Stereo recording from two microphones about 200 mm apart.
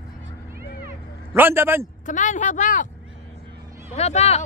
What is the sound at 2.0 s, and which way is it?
Speech, 40° left (ahead or behind).